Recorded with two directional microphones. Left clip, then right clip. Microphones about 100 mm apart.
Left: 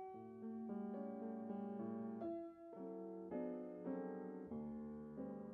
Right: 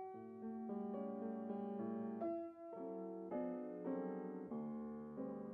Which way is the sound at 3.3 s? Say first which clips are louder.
Right 2 dB; 30° right (ahead or behind).